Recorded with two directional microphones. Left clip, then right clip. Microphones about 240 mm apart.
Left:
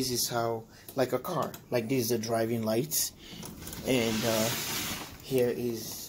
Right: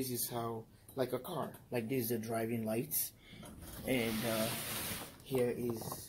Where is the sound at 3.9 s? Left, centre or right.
Centre.